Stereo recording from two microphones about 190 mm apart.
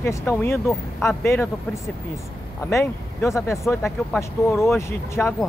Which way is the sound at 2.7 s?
15° left (ahead or behind).